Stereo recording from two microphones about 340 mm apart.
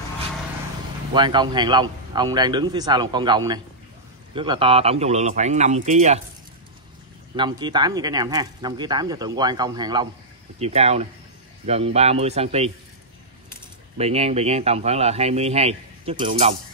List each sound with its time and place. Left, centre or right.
1.1 s a man's voice: centre
7.3 s speech: centre
13.9 s speech: centre